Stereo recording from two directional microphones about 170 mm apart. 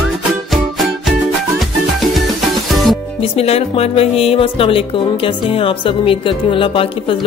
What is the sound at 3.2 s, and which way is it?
Speech, 35° left (ahead or behind).